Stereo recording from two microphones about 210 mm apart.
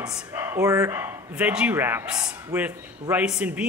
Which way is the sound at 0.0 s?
10° right (ahead or behind).